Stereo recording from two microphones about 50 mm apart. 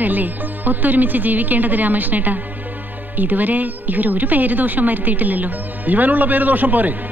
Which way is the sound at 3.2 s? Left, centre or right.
Right.